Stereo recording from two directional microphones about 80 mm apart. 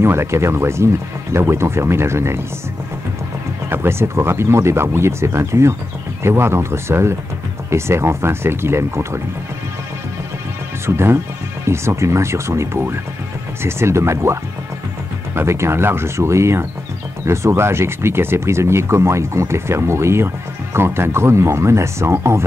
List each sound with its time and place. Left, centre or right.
0.0 s speech: right
3.7 s speech: right
10.9 s speech: right